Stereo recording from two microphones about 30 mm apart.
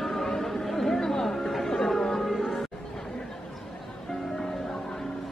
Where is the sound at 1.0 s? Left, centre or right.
Centre.